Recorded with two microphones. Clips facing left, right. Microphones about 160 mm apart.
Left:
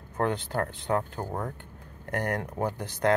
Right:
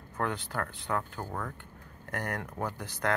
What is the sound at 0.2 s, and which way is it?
Speech, 30° left (ahead or behind).